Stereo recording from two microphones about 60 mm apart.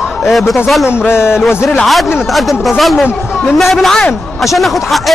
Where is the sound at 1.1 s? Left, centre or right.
Left.